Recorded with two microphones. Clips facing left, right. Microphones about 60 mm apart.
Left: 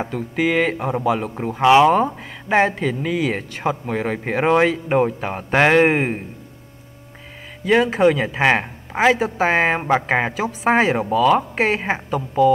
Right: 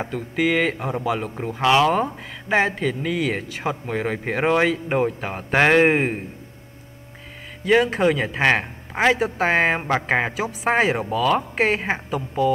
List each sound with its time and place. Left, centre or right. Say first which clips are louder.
0.0 s speech: left 2 dB; centre
1.6 s speech: left 5 dB; centre
1.9 s speech: left 4 dB; centre
7.6 s speech: left 2 dB; centre